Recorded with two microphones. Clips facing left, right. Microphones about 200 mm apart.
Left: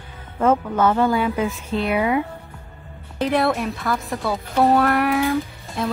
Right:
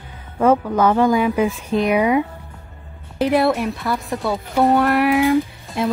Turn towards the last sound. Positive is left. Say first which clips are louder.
# right 5 dB
turn(degrees=-15)  # may be behind; listen again after turning